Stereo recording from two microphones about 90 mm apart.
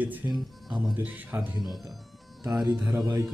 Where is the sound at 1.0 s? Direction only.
15° right (ahead or behind).